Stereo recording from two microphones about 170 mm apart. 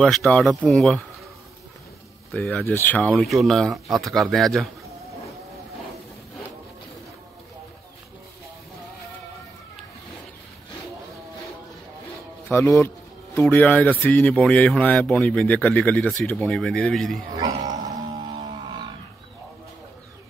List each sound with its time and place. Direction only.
0.0 s speech: 5° left (ahead or behind)
2.3 s speech: 5° left (ahead or behind)
12.4 s speech: 15° left (ahead or behind)
17.3 s dog: 20° right (ahead or behind)